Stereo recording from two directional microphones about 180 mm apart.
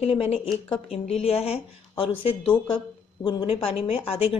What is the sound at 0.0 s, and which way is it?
A woman's voice, 35° left (ahead or behind).